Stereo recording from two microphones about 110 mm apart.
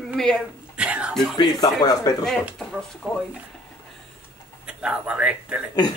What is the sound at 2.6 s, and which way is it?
Speech, 5° left (ahead or behind).